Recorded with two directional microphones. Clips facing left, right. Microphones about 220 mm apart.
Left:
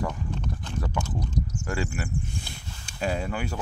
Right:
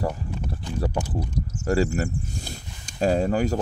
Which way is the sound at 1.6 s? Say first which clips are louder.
Right 13 dB; 40° right (ahead or behind).